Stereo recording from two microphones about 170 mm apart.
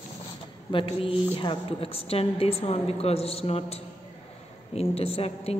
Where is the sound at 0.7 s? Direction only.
30° left (ahead or behind).